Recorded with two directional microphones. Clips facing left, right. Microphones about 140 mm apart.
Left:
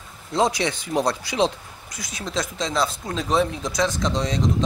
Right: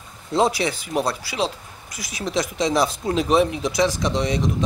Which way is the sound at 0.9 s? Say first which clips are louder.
Left 1 dB; 15° left (ahead or behind).